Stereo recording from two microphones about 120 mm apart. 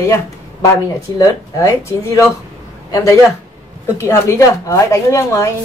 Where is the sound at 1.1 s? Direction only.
30° left (ahead or behind).